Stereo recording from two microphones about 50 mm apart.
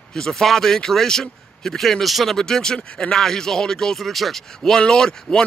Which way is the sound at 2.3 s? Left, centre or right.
Centre.